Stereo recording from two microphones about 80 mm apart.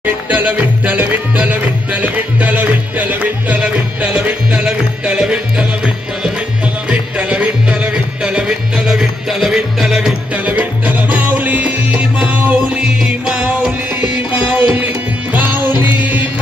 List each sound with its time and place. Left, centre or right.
0.0 s music: right
6.9 s music: centre
10.3 s music: centre